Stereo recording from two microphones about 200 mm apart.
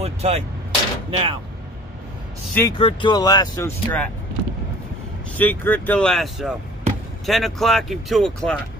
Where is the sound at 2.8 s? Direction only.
25° left (ahead or behind); by 4.1 s 10° left (ahead or behind).